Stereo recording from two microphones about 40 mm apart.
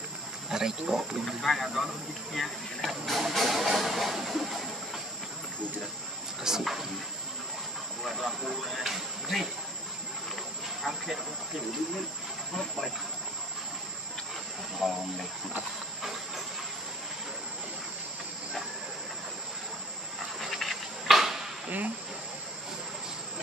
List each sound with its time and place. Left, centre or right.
0.5 s speech: centre
1.2 s speech: centre
6.4 s speech: centre
8.1 s speech: centre
12.5 s speech: centre
14.8 s speech: centre
20.3 s a sound: centre
21.6 s insect: right